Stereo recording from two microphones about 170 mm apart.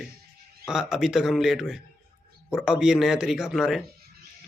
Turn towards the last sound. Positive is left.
turn(degrees=0)  # may be behind; listen again after turning